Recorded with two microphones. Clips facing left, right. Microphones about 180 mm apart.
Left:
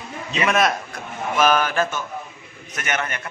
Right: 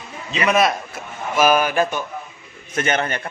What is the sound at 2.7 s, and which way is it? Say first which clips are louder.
Speech: right 5 dB; 30° right (ahead or behind).